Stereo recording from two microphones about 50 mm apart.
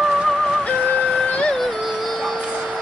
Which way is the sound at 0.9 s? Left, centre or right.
Left.